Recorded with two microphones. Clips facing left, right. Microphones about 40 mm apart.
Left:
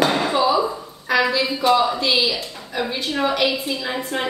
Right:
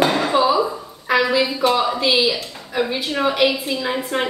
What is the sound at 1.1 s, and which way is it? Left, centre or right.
A woman's voice, centre.